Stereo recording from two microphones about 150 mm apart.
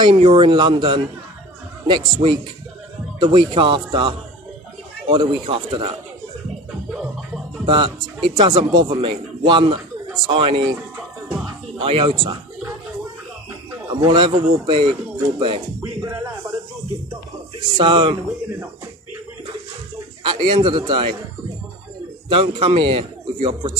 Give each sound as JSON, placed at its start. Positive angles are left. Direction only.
{"t": 0.0, "sound": "a man's voice", "side_deg": -35}
{"t": 7.6, "sound": "a man's voice", "side_deg": -35}
{"t": 11.8, "sound": "a man's voice", "side_deg": -35}
{"t": 13.7, "sound": "speech", "side_deg": -30}
{"t": 17.6, "sound": "a man's voice", "side_deg": -30}
{"t": 20.2, "sound": "a man's voice", "side_deg": -35}
{"t": 22.3, "sound": "a man's voice", "side_deg": -35}